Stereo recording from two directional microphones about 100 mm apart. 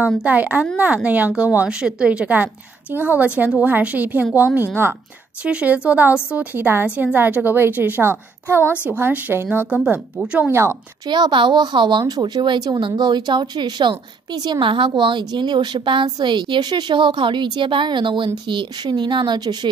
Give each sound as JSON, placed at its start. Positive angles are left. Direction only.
{"t": 0.2, "sound": "a woman's voice", "side_deg": -15}
{"t": 5.4, "sound": "a woman's voice", "side_deg": -10}
{"t": 10.5, "sound": "a woman's voice", "side_deg": -30}
{"t": 11.1, "sound": "a woman's voice", "side_deg": -45}